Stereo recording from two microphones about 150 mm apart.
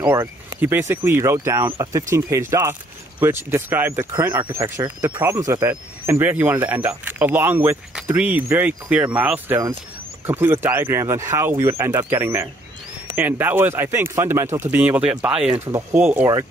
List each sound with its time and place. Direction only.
0.0 s speech: 15° right (ahead or behind)